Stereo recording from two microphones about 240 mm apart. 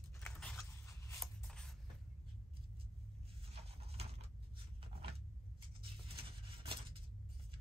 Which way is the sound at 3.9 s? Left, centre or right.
Right.